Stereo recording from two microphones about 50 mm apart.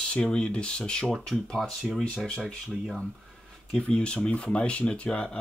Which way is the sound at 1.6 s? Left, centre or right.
Centre.